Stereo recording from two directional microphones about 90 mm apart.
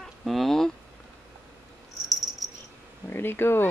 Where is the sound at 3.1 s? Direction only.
25° left (ahead or behind).